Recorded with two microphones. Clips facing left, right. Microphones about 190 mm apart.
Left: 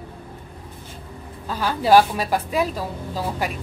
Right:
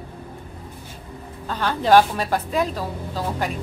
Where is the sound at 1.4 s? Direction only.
10° left (ahead or behind).